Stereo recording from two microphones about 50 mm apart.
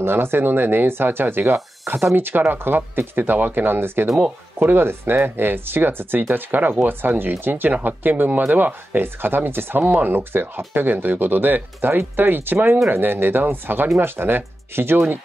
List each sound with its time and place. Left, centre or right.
0.0 s speech: right